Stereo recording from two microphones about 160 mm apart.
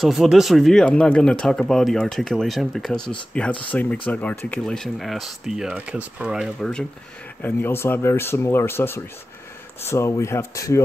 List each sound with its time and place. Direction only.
0.0 s speech: centre (ahead or behind); by 10.8 s 20° left (ahead or behind)